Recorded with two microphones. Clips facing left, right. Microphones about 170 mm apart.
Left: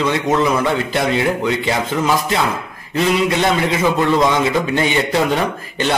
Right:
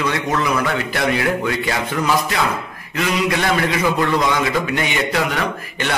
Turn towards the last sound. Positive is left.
turn(degrees=25)  # may be behind; listen again after turning